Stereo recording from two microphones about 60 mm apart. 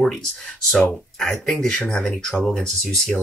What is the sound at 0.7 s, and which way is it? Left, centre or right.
Speech, centre.